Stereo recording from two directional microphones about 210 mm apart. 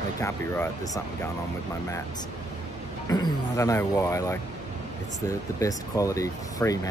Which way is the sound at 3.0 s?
20° left (ahead or behind).